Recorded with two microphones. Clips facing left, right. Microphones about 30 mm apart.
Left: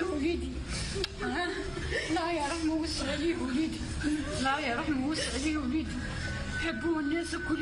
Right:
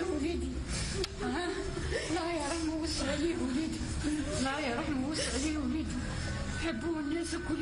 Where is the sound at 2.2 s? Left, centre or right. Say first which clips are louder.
Left 3 dB; left.